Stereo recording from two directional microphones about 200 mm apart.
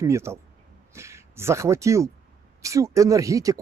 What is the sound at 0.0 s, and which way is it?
Speech, 15° right (ahead or behind).